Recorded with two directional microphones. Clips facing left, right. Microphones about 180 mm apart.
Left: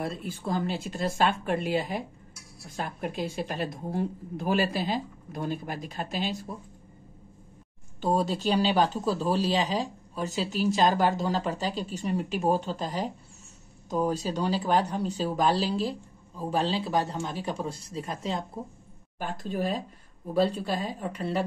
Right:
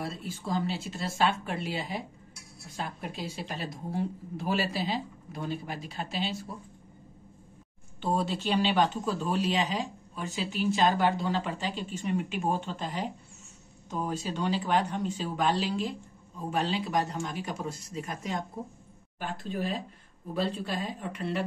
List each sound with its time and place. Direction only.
0.0 s a woman's voice: 55° left (ahead or behind)
8.0 s speech: 40° left (ahead or behind)
19.1 s a woman's voice: 45° left (ahead or behind)